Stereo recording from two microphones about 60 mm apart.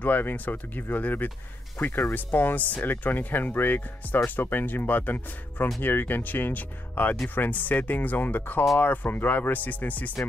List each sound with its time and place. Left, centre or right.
0.0 s speech: left